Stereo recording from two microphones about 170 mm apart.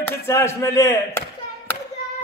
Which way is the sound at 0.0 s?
15° left (ahead or behind).